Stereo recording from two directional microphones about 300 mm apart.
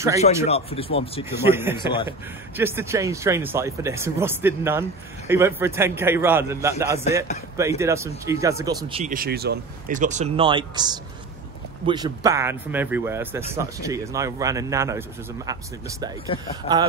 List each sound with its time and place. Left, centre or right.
0.5 s speech: centre
1.3 s speech: centre
16.3 s speech: centre